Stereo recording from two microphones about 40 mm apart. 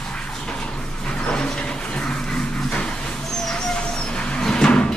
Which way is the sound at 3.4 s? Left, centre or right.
Centre.